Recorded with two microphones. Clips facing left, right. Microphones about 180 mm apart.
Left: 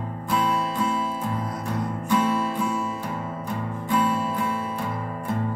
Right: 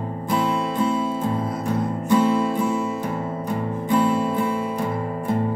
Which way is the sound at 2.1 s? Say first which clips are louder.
Right 5 dB; 25° right (ahead or behind).